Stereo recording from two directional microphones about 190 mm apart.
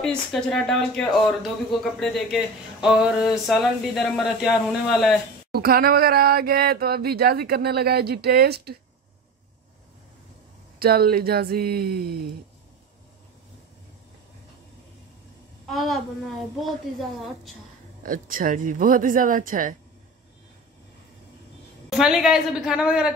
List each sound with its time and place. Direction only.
0.0 s speech: 5° left (ahead or behind)
5.5 s a sound: 55° right (ahead or behind)
10.8 s speech: 55° right (ahead or behind)
15.6 s speech: centre (ahead or behind)
18.0 s speech: 45° right (ahead or behind)
21.8 s speech: 5° right (ahead or behind)